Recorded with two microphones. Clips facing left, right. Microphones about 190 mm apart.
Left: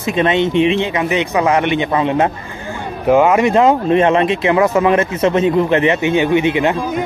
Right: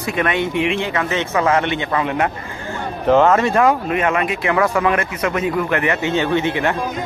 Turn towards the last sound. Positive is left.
turn(degrees=15)  # may be behind; listen again after turning